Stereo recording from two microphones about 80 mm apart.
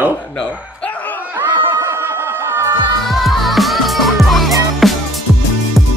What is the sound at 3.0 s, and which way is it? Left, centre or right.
Music, centre.